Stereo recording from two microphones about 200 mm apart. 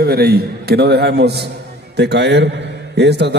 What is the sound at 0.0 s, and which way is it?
A man's voice, 50° right (ahead or behind).